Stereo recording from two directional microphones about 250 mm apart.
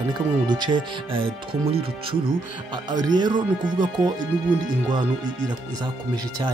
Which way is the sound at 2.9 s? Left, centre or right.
Centre.